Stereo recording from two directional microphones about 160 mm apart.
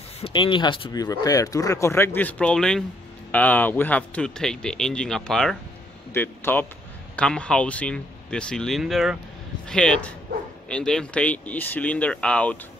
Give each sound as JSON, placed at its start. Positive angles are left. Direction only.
{"t": 0.2, "sound": "a man's voice", "side_deg": 30}